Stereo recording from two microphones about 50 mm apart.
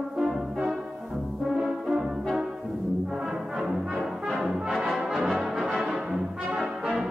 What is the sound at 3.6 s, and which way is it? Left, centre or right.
Music, centre.